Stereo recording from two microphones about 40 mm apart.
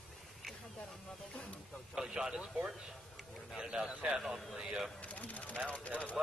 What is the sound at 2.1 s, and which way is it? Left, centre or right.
Speech, right.